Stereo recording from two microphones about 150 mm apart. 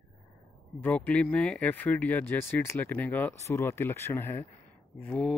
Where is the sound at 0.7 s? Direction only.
10° left (ahead or behind).